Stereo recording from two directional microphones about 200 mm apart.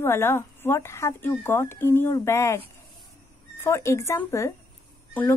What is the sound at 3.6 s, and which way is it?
Speech, 15° left (ahead or behind).